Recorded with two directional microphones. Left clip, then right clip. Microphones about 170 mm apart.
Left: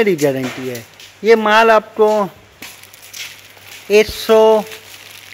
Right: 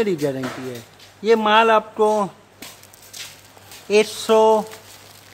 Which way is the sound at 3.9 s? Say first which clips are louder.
Left 5 dB; 5° left (ahead or behind).